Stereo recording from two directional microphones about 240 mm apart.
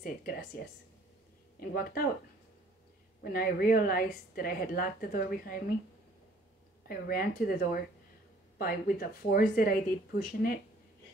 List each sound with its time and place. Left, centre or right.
0.0 s a sound: left
1.6 s a woman's voice: left
3.2 s a woman's voice: left
6.9 s a woman's voice: left